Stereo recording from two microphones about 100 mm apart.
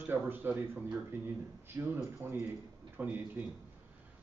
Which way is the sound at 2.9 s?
15° right (ahead or behind).